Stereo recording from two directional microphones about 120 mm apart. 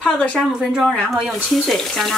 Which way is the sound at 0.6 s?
10° right (ahead or behind).